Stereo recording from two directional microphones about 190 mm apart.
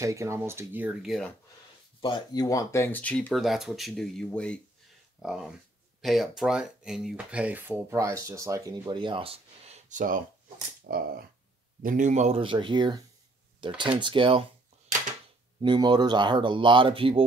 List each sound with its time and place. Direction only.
0.0 s speech: 15° right (ahead or behind)
2.0 s speech: 25° left (ahead or behind); by 10.2 s 45° right (ahead or behind)
10.9 s a sound: 50° right (ahead or behind)
11.8 s speech: 40° right (ahead or behind); by 14.4 s 25° right (ahead or behind)
15.6 s speech: 25° right (ahead or behind)